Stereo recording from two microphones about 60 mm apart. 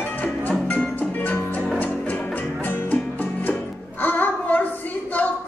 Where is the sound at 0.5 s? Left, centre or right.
Left.